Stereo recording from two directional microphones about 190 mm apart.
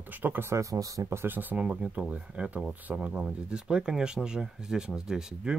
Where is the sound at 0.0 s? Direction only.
10° right (ahead or behind).